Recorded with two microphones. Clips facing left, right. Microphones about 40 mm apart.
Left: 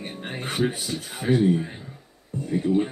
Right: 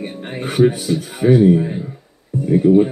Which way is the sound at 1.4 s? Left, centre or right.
Centre.